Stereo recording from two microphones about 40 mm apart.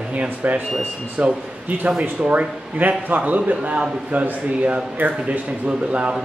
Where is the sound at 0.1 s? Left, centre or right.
Right.